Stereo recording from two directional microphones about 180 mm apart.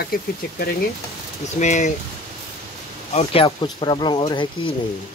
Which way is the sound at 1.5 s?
40° left (ahead or behind).